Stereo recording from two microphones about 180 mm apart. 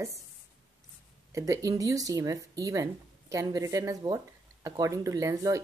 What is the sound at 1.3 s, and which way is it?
Speech, 15° right (ahead or behind).